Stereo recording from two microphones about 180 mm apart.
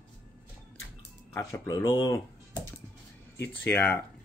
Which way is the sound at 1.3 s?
15° left (ahead or behind).